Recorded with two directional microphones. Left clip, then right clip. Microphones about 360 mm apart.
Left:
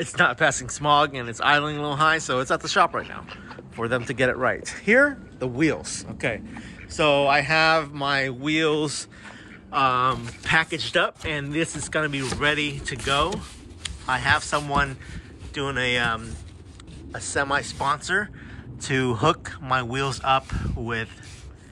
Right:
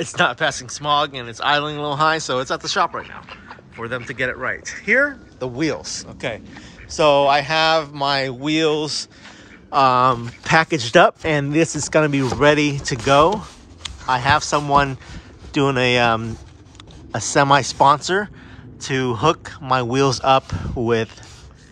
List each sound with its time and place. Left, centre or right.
0.0 s speech: centre